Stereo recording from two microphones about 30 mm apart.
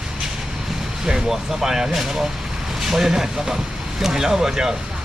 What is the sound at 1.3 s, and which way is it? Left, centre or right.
Speech, centre.